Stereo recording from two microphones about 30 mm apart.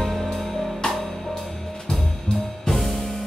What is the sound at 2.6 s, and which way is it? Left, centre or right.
Music, centre.